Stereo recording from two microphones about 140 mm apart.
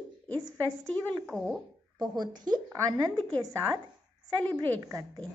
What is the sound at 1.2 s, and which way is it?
Speech, 5° left (ahead or behind).